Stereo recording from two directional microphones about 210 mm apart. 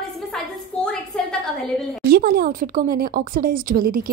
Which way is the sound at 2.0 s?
45° right (ahead or behind).